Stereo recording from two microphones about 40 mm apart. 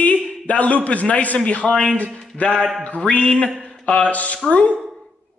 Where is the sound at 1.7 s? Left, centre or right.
Centre.